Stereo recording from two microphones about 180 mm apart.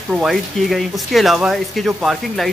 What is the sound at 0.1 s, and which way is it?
Speech, centre (ahead or behind).